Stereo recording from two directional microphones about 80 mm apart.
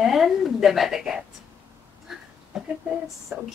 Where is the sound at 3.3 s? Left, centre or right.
Right.